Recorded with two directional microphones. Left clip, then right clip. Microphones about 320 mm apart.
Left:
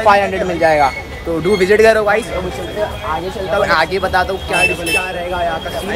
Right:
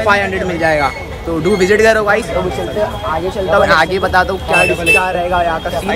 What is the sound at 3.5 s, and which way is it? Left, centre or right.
Speech, centre.